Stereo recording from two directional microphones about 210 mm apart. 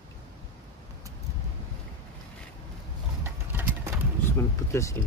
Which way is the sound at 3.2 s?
10° right (ahead or behind).